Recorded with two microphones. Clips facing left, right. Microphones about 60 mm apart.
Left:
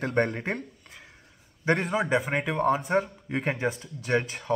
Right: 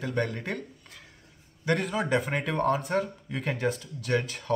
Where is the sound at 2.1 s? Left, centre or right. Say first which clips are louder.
Left 1 dB; centre.